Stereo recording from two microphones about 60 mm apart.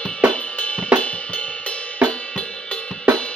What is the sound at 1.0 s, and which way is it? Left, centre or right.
Cymbal, left.